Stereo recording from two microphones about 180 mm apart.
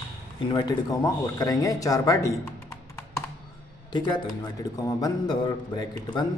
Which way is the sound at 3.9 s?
25° left (ahead or behind).